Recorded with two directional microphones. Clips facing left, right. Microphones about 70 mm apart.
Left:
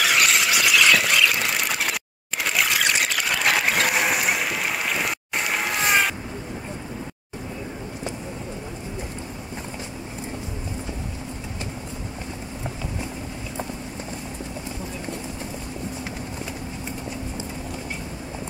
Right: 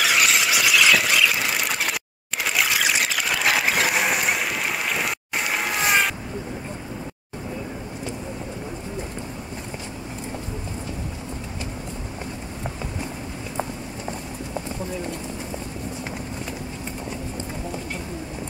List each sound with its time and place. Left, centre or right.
0.0 s squeal: centre
2.4 s a sound: centre
4.9 s boat: centre